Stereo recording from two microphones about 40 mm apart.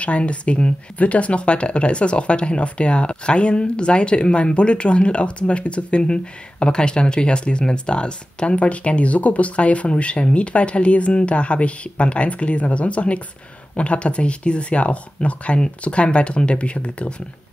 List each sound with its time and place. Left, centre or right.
0.0 s speech: left